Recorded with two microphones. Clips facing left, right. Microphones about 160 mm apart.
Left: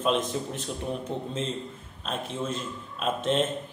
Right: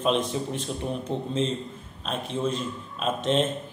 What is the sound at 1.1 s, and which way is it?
Speech, 25° right (ahead or behind).